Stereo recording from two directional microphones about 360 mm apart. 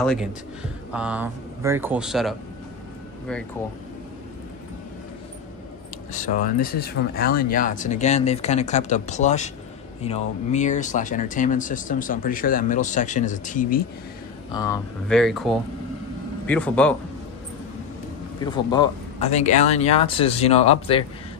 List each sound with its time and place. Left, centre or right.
0.0 s speech: centre
6.1 s speech: left
14.5 s speech: centre
18.4 s speech: centre